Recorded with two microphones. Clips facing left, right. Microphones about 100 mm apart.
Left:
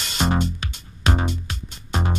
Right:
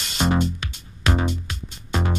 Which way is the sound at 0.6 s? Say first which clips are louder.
Left 1 dB; 30° left (ahead or behind).